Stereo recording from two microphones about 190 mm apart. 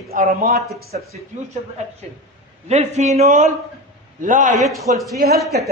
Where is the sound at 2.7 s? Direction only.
35° right (ahead or behind).